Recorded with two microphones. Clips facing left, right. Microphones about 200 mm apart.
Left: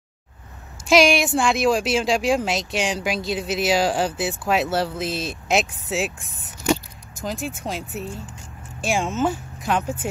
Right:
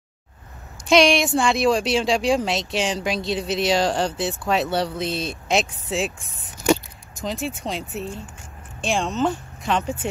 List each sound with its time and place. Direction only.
0.8 s speech: centre (ahead or behind)
7.2 s speech: centre (ahead or behind)